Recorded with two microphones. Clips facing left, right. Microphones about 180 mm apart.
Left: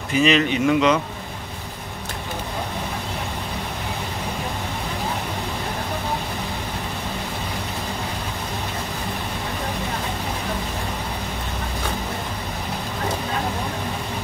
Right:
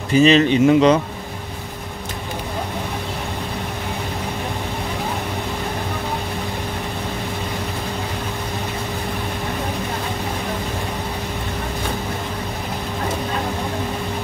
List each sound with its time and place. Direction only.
0.1 s speech: 35° right (ahead or behind)